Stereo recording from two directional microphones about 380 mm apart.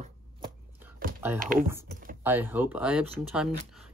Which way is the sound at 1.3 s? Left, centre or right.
Right.